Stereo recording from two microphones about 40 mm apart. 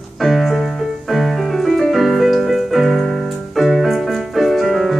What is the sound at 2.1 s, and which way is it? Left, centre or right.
Piano, centre.